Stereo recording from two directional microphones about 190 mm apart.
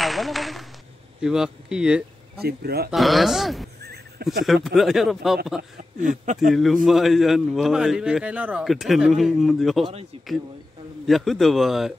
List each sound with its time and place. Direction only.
0.0 s a man's voice: centre (ahead or behind)
2.4 s a man's voice: 55° right (ahead or behind)
2.9 s a man's voice: centre (ahead or behind)
3.8 s horse: 55° right (ahead or behind)
4.6 s a man's voice: centre (ahead or behind)
5.6 s speech: 40° right (ahead or behind)
6.5 s a man's voice: centre (ahead or behind)
11.1 s a man's voice: centre (ahead or behind)